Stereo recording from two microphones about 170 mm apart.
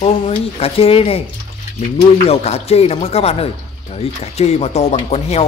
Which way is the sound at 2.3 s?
35° left (ahead or behind).